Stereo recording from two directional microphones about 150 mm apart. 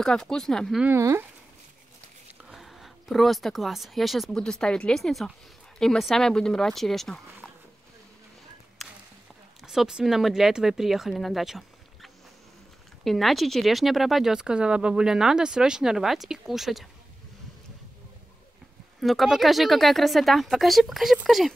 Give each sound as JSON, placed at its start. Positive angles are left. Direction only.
{"t": 0.0, "sound": "speech", "side_deg": 5}
{"t": 0.8, "sound": "speech", "side_deg": -20}
{"t": 2.4, "sound": "speech", "side_deg": 0}
{"t": 9.6, "sound": "speech", "side_deg": 0}
{"t": 18.9, "sound": "speech", "side_deg": 0}